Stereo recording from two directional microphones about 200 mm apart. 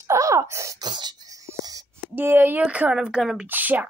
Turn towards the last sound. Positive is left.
turn(degrees=-10)  # may be behind; listen again after turning